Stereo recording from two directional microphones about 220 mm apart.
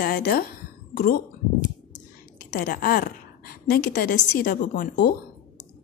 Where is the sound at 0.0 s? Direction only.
45° left (ahead or behind).